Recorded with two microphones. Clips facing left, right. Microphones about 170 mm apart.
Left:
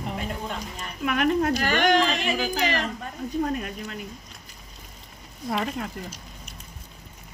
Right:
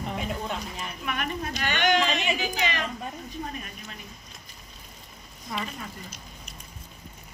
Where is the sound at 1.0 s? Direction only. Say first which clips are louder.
Left 10 dB; 75° left (ahead or behind).